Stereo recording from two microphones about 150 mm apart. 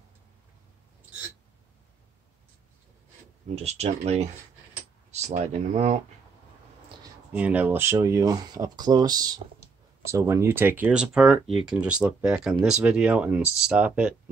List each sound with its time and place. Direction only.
3.5 s speech: 45° right (ahead or behind)
7.3 s speech: 10° right (ahead or behind)